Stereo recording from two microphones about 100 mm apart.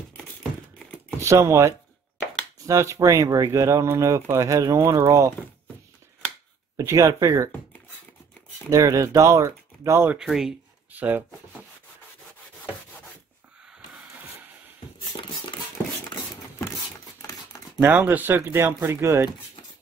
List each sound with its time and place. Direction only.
1.2 s speech: 30° right (ahead or behind)
6.8 s speech: 30° right (ahead or behind)
8.6 s speech: 35° right (ahead or behind)
10.1 s speech: 5° right (ahead or behind)
11.0 s speech: 20° right (ahead or behind)
17.8 s speech: 20° right (ahead or behind)